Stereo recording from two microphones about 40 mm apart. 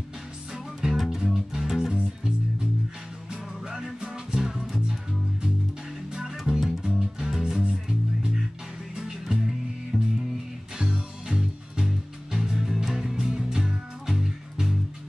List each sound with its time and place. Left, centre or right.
0.7 s music: centre
3.3 s music: centre
6.1 s music: centre
7.6 s music: right
9.9 s music: centre
10.8 s music: centre